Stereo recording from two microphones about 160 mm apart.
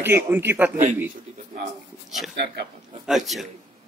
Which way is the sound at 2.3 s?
90° right.